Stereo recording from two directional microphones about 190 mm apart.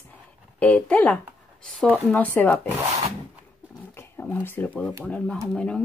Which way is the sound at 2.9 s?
35° right (ahead or behind).